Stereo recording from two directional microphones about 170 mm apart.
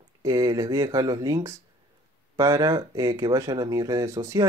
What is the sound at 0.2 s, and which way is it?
Speech, 20° right (ahead or behind).